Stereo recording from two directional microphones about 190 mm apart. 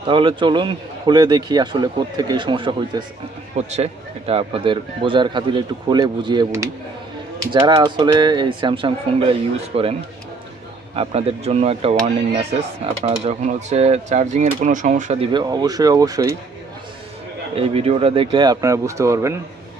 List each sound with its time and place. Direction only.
0.0 s a man's voice: 25° right (ahead or behind)
11.0 s speech: 30° right (ahead or behind)
13.0 s speech: 35° right (ahead or behind)
15.3 s a man's voice: 20° right (ahead or behind)
17.6 s a man's voice: 30° right (ahead or behind); by 19.3 s 15° right (ahead or behind)